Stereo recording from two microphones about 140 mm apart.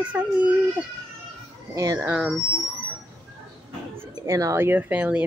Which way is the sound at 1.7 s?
20° right (ahead or behind).